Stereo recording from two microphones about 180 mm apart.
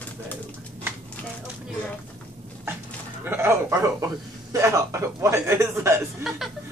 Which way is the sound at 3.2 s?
10° right (ahead or behind).